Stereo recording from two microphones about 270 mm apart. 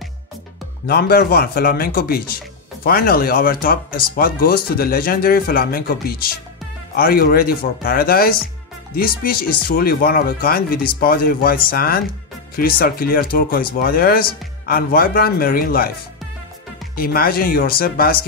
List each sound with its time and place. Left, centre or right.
0.8 s speech: left
16.9 s speech: left